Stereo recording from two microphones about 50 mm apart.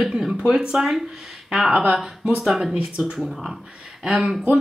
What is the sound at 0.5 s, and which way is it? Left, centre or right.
Speech, centre.